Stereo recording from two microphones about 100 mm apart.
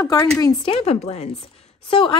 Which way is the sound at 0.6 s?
80° left.